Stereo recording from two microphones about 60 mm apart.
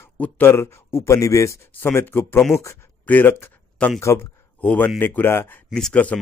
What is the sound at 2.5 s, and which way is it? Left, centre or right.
Speech, left.